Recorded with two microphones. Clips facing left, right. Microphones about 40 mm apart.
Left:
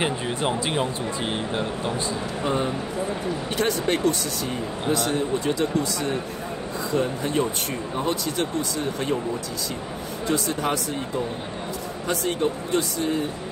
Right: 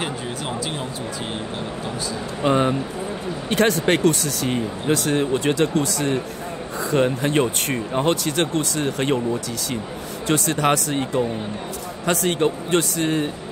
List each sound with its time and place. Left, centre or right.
0.5 s speech: left
2.4 s speech: right
10.3 s speech: right
12.1 s speech: right